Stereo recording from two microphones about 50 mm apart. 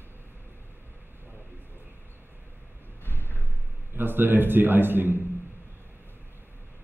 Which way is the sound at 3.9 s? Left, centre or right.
Right.